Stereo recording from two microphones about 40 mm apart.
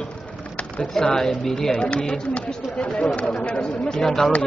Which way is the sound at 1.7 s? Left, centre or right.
Left.